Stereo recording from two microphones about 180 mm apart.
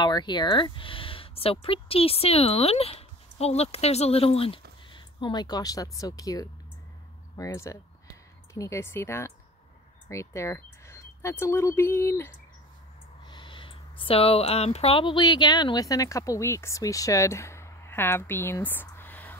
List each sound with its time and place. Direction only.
0.0 s speech: 25° left (ahead or behind)
13.2 s speech: 25° left (ahead or behind); by 19.3 s 10° left (ahead or behind)